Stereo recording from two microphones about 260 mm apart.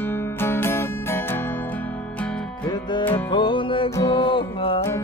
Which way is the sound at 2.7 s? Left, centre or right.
Centre.